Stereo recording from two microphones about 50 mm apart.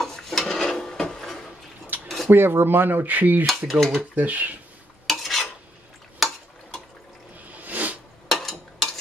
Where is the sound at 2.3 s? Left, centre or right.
Right.